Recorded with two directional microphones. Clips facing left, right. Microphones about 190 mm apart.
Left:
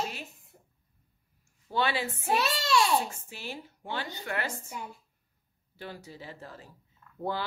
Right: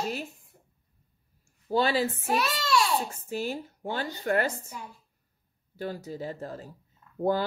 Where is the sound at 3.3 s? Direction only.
45° right (ahead or behind).